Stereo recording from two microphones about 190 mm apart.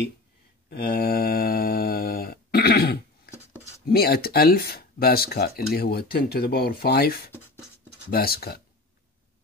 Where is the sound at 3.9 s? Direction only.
55° left (ahead or behind).